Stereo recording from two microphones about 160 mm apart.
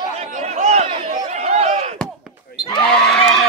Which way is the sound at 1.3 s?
40° right (ahead or behind).